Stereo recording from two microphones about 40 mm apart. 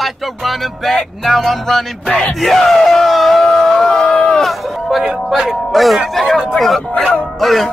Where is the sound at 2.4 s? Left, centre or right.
Centre; by 4.4 s left.